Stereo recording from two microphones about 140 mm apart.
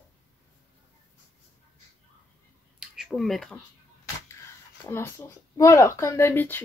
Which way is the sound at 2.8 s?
Centre (ahead or behind).